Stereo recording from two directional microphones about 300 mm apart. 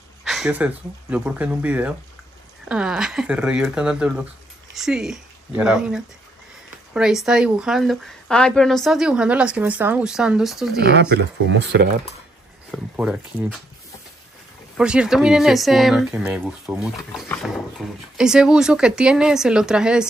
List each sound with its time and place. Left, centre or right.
0.2 s speech: centre
10.9 s speech: right
12.7 s speech: centre
14.8 s speech: centre